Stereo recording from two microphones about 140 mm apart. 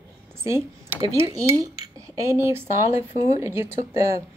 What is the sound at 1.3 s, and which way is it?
Cutlery, 20° right (ahead or behind).